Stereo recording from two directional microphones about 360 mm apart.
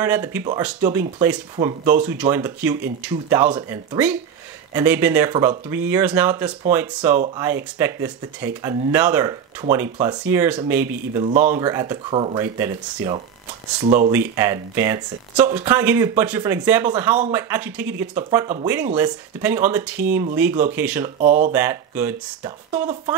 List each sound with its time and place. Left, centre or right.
0.0 s speech: centre
11.2 s speech: right
11.6 s speech: centre
14.1 s speech: centre
21.2 s speech: right
21.5 s speech: centre